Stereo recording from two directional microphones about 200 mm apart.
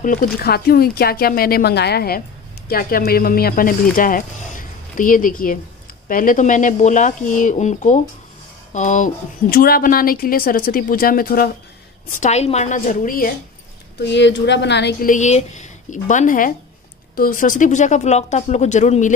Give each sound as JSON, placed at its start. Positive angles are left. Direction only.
{"t": 0.0, "sound": "speech", "side_deg": 45}
{"t": 12.2, "sound": "speech", "side_deg": 35}
{"t": 14.0, "sound": "speech", "side_deg": 60}